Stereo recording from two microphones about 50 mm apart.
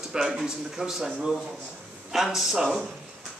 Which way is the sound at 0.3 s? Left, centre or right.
Centre.